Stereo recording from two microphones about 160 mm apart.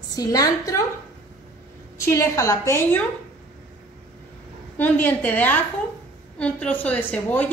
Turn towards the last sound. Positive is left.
turn(degrees=10)  # may be behind; listen again after turning